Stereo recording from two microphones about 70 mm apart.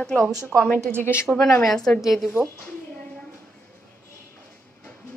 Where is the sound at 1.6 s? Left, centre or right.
Centre.